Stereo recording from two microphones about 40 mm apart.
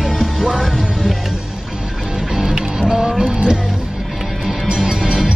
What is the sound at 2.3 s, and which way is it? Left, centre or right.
Music, centre.